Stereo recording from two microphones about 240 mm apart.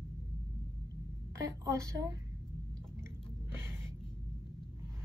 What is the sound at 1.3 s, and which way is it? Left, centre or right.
Speech, centre.